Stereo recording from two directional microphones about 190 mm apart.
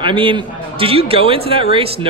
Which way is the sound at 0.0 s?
25° right (ahead or behind).